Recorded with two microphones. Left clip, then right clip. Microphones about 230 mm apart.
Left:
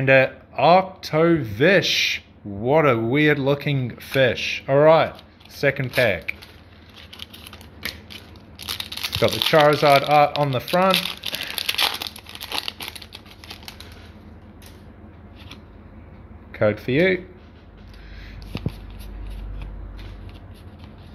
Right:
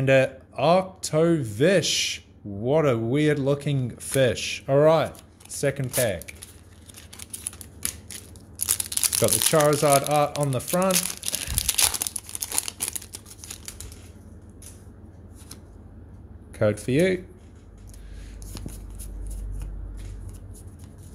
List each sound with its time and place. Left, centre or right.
0.0 s speech: centre
9.0 s crumpling: centre
16.5 s speech: right